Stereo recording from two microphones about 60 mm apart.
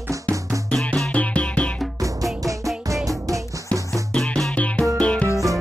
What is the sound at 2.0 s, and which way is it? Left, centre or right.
Music, right.